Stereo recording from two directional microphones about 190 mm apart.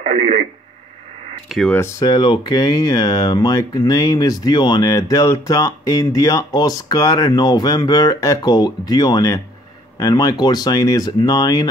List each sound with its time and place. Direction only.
0.0 s radio: 35° right (ahead or behind)
1.5 s speech: centre (ahead or behind)
1.8 s speech: 15° left (ahead or behind)